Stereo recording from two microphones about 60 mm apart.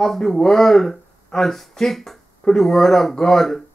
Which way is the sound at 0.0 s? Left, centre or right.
Centre.